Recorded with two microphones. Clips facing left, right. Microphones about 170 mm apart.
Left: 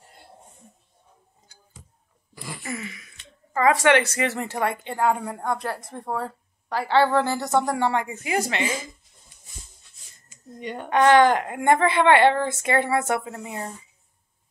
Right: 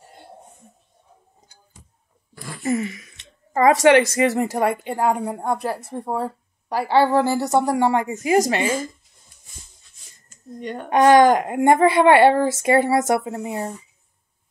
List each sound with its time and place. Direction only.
2.6 s a sound: 40° right (ahead or behind)
3.8 s speech: 20° right (ahead or behind)
4.2 s a woman's voice: 35° right (ahead or behind)
5.6 s a woman's voice: 15° right (ahead or behind)
7.9 s a woman's voice: 35° right (ahead or behind)
10.6 s a woman's voice: 5° left (ahead or behind)
10.9 s a woman's voice: 20° right (ahead or behind); by 13.2 s 40° right (ahead or behind)
13.2 s speech: 30° right (ahead or behind)